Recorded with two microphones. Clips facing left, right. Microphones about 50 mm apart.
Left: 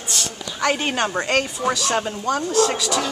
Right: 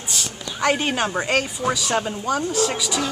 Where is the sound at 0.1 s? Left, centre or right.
Centre.